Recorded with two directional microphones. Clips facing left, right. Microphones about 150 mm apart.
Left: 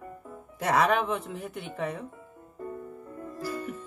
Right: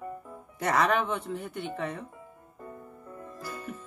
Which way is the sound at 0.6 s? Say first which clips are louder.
Left 1 dB; 5° left (ahead or behind).